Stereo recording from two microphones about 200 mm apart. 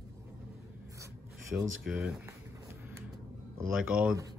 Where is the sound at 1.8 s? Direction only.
Centre (ahead or behind).